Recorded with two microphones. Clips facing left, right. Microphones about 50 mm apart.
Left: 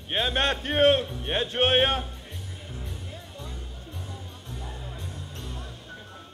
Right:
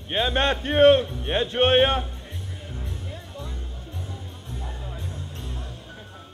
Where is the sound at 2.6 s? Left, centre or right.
Centre.